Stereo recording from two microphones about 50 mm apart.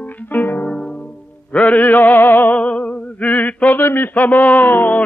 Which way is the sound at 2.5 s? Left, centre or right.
Left.